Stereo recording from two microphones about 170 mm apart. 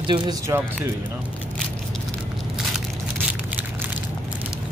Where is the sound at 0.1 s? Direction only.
30° right (ahead or behind).